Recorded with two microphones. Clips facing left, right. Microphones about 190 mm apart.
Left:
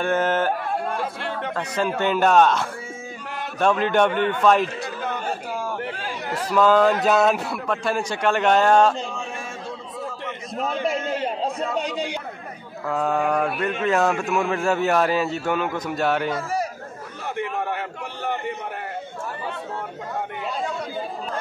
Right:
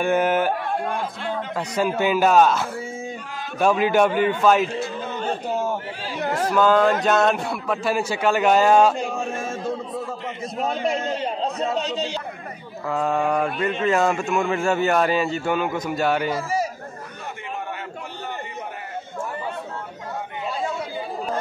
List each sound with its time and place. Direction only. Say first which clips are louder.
0.0 s speech: right 2 dB; 10° right (ahead or behind)
0.8 s a man's voice: even; 5° left (ahead or behind)
1.5 s a man's voice: right 1 dB; 10° right (ahead or behind)
5.5 s chatter: right 5 dB; 25° right (ahead or behind)
6.1 s a sound: right 9 dB; 50° right (ahead or behind)
6.5 s a man's voice: left 1 dB; centre (ahead or behind)
10.7 s a man's voice: even; centre (ahead or behind)
11.1 s a sound: even; 5° left (ahead or behind)
12.8 s a man's voice: even; centre (ahead or behind)
17.4 s a sound: left 7 dB; 70° left (ahead or behind)